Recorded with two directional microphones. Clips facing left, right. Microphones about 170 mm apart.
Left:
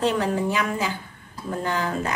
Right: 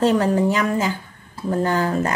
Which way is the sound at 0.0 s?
45° right (ahead or behind).